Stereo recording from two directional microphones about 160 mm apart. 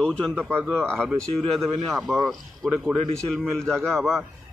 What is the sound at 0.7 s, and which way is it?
A man's voice, 5° left (ahead or behind).